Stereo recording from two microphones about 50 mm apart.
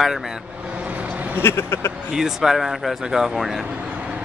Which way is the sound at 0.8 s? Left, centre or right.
Right.